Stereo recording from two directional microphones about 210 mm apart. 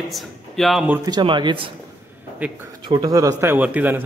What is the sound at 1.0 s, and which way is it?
Speech, 20° right (ahead or behind).